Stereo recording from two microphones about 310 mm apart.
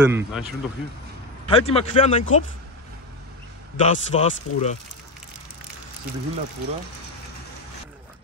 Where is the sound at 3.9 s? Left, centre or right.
Left.